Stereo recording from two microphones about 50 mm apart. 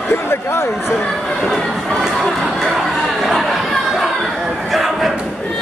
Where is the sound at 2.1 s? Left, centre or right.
Centre.